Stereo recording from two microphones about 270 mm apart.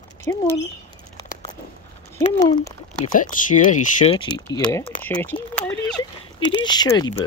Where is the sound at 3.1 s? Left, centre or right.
Left; by 5.3 s centre.